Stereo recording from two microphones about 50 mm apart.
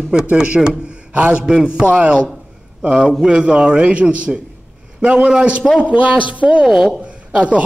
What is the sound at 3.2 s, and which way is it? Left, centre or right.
A man's voice, centre.